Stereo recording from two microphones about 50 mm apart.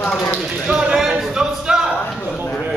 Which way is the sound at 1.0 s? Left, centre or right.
Centre.